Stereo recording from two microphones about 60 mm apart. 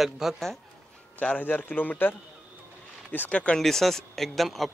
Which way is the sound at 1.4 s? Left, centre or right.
Left.